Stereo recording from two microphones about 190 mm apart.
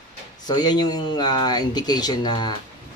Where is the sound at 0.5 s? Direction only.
20° left (ahead or behind).